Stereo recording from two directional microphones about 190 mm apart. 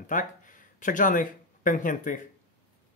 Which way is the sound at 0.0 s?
45° left (ahead or behind).